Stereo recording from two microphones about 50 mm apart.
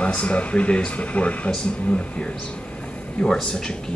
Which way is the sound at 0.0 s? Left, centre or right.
Left.